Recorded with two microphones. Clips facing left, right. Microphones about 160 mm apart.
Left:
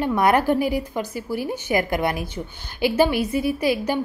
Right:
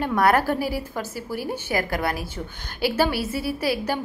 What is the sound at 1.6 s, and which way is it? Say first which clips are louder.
Speech: left 4 dB; 20° left (ahead or behind).